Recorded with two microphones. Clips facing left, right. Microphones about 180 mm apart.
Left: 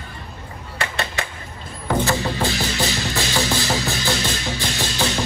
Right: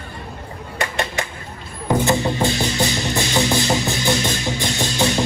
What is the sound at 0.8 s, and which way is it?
Music, 15° right (ahead or behind).